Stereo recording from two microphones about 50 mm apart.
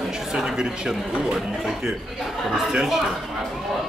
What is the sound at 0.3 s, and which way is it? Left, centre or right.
Speech, centre.